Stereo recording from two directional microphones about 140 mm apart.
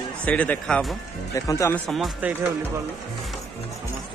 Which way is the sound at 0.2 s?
10° left (ahead or behind).